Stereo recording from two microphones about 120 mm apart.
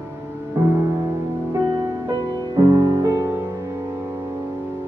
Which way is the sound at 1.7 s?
35° right (ahead or behind).